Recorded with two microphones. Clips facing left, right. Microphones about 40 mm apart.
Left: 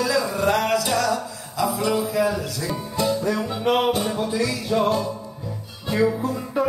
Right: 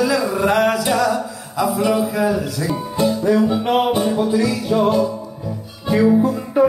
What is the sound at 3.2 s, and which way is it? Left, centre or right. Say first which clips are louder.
Music: right 8 dB; right.